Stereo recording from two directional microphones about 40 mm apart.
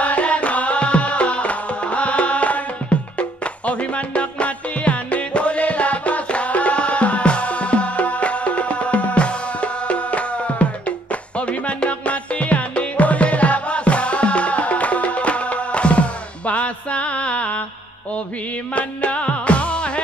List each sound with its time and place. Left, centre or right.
0.0 s music: left
18.8 s music: left